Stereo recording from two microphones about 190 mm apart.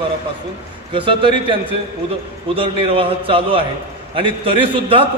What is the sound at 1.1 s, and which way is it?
Speech, 25° right (ahead or behind).